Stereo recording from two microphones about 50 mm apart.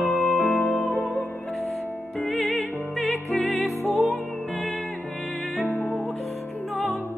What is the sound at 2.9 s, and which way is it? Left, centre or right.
Music, left.